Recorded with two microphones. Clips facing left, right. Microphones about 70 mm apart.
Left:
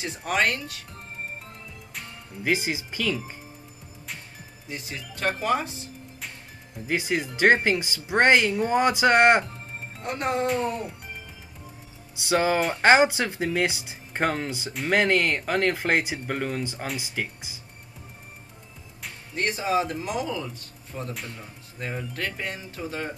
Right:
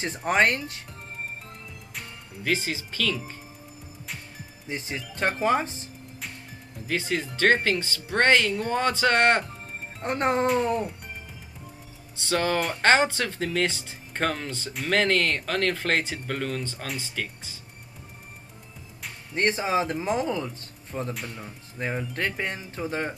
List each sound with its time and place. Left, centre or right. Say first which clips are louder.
0.0 s speech: right 3 dB; right
2.4 s speech: left 2 dB; centre
4.6 s speech: right 3 dB; right
6.9 s speech: left 2 dB; centre
10.0 s speech: right 3 dB; right
12.2 s speech: left 3 dB; centre
19.3 s speech: right 1 dB; right